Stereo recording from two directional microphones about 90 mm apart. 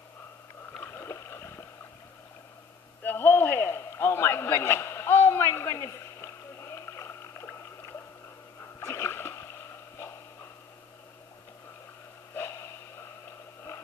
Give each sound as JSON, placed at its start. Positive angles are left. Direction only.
{"t": 0.7, "sound": "rowboat", "side_deg": 25}
{"t": 3.0, "sound": "a sound", "side_deg": 20}
{"t": 8.8, "sound": "splash", "side_deg": 30}